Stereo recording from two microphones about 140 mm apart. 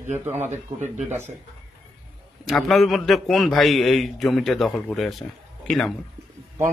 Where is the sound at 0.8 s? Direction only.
55° right (ahead or behind).